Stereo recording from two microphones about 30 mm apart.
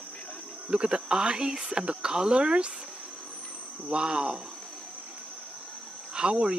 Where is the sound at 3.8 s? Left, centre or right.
Right.